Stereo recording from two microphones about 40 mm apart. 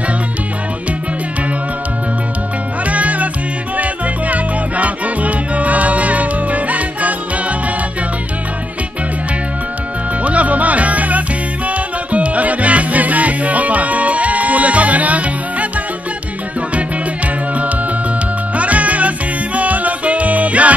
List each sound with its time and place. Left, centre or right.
2.8 s music: right
10.2 s music: right
18.6 s music: right